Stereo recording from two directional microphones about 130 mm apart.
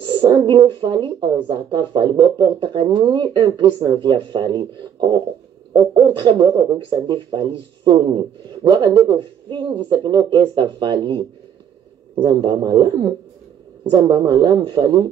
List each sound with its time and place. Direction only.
0.0 s speech: 40° right (ahead or behind)